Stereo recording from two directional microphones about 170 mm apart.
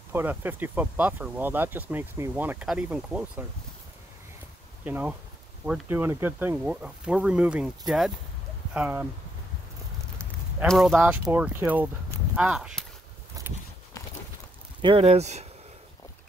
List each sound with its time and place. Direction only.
0.1 s speech: 10° right (ahead or behind)
4.8 s speech: 10° right (ahead or behind)
10.7 s speech: centre (ahead or behind)
14.8 s speech: 30° right (ahead or behind)